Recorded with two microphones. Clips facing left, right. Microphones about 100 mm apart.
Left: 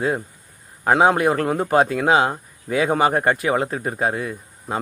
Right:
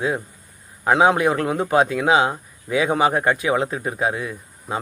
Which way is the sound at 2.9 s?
50° left (ahead or behind).